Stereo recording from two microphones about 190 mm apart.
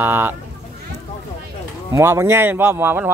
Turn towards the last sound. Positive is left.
turn(degrees=-10)  # may be behind; listen again after turning